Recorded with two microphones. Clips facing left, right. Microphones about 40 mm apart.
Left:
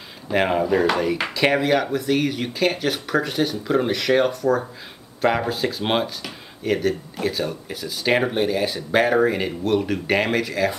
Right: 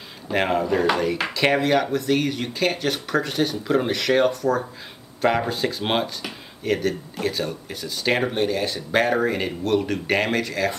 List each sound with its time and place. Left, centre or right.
0.3 s speech: centre